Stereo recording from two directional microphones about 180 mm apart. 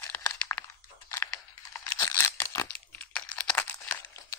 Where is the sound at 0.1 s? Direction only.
15° left (ahead or behind).